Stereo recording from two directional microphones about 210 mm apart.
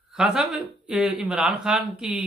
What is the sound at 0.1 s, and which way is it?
Speech, 5° right (ahead or behind).